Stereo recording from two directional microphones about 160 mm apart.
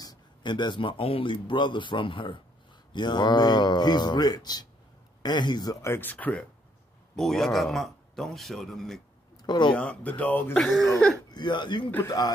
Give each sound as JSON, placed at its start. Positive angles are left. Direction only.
{"t": 0.0, "sound": "a man's voice", "side_deg": 25}
{"t": 9.4, "sound": "speech", "side_deg": 30}
{"t": 9.8, "sound": "speech", "side_deg": 10}
{"t": 11.2, "sound": "a man's voice", "side_deg": 25}
{"t": 11.9, "sound": "speech", "side_deg": 15}